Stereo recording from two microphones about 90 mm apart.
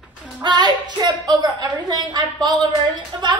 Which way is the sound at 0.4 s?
55° right (ahead or behind).